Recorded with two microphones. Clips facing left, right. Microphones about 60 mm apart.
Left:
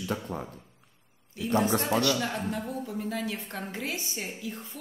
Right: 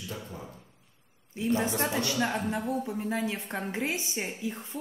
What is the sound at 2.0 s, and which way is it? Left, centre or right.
Speech, right.